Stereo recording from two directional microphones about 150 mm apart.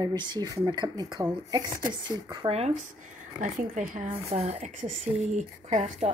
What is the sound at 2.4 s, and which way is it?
Speech, 45° right (ahead or behind).